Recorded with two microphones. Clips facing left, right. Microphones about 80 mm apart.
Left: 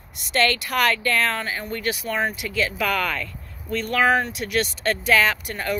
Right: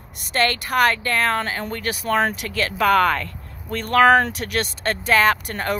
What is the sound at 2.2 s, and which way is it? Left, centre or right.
Speech, right.